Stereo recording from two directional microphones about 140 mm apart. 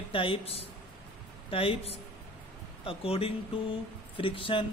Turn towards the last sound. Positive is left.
turn(degrees=40)  # may be behind; listen again after turning